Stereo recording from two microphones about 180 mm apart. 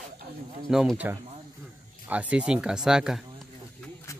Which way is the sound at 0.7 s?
5° right (ahead or behind).